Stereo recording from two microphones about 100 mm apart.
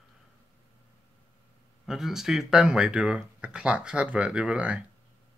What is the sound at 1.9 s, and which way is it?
Speech, 5° right (ahead or behind).